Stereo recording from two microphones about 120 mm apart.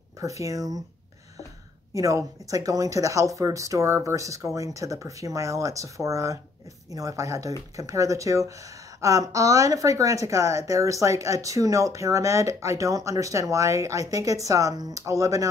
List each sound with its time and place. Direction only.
0.2 s a woman's voice: 25° right (ahead or behind)
2.0 s a woman's voice: 30° right (ahead or behind)